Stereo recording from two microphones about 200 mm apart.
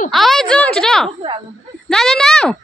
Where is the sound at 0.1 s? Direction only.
Centre (ahead or behind).